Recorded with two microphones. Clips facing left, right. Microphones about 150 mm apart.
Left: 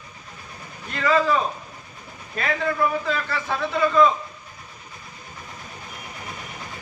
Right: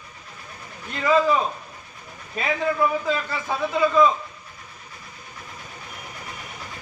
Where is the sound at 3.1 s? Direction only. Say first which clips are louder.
Right 1 dB; 15° right (ahead or behind).